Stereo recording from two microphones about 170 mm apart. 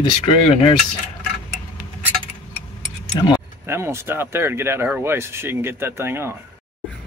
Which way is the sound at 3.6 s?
15° right (ahead or behind).